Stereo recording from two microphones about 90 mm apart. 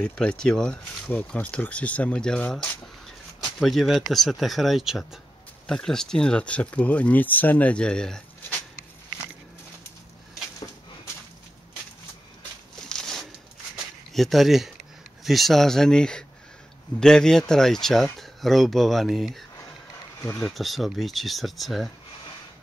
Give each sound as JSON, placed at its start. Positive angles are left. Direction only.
{"t": 0.0, "sound": "speech", "side_deg": 10}
{"t": 3.4, "sound": "speech", "side_deg": 5}
{"t": 12.8, "sound": "a sound", "side_deg": 5}
{"t": 14.1, "sound": "speech", "side_deg": 0}
{"t": 20.2, "sound": "speech", "side_deg": 30}
{"t": 20.4, "sound": "speech", "side_deg": 0}